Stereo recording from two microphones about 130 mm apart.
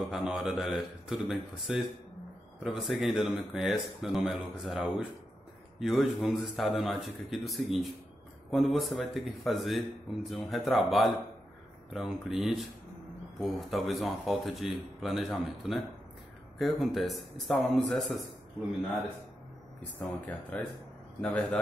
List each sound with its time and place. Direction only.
0.1 s speech: 5° right (ahead or behind)
20.5 s speech: 10° left (ahead or behind)